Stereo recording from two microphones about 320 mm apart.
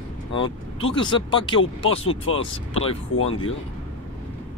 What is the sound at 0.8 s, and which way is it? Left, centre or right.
Speech, centre.